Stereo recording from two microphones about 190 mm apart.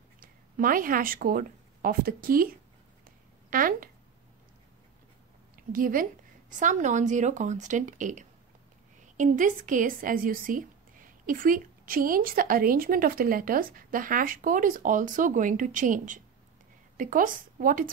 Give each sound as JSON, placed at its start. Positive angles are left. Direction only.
{"t": 0.2, "sound": "speech", "side_deg": -50}
{"t": 5.6, "sound": "a woman's voice", "side_deg": -45}